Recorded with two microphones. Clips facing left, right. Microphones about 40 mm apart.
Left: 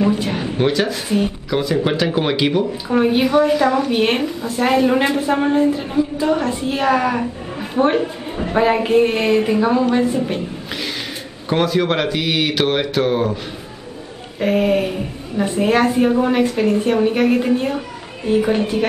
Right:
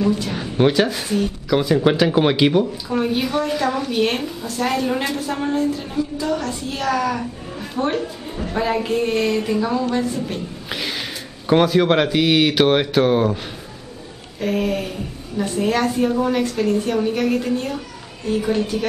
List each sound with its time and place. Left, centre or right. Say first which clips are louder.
0.0 s a sound: left 3 dB; left
0.6 s speech: right 3 dB; centre
2.6 s a woman's voice: left 4 dB; centre
3.9 s a woman's voice: left 3 dB; left
11.4 s speech: right 2 dB; centre
14.4 s a woman's voice: left 5 dB; left